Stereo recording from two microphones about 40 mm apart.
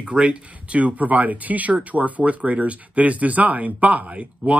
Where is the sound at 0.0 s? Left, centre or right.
Right.